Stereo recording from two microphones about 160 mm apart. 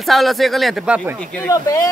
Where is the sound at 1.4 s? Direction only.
20° left (ahead or behind).